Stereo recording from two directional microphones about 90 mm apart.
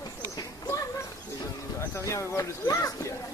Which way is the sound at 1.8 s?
35° left (ahead or behind).